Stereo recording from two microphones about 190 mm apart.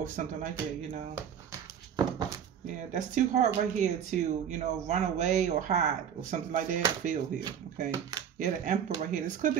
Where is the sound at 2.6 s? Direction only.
40° right (ahead or behind).